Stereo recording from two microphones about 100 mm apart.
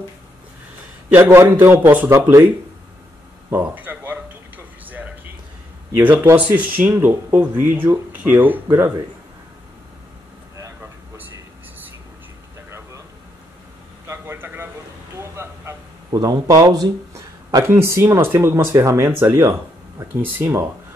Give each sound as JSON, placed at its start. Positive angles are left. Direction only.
{"t": 1.1, "sound": "speech", "side_deg": -25}
{"t": 3.4, "sound": "a sound", "side_deg": -20}
{"t": 5.9, "sound": "speech", "side_deg": -20}
{"t": 10.6, "sound": "vehicle", "side_deg": -20}
{"t": 14.0, "sound": "a sound", "side_deg": -25}
{"t": 17.6, "sound": "speech", "side_deg": -25}